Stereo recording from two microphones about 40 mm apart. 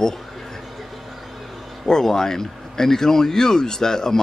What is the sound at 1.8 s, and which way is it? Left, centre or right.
Speech, centre.